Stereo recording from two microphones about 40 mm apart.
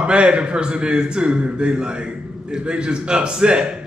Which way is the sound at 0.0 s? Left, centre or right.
Right.